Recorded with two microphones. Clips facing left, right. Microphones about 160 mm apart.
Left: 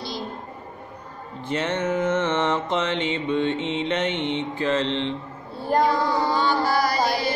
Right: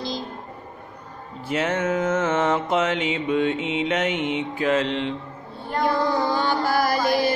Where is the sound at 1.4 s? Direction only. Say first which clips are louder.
Right 1 dB; 10° right (ahead or behind).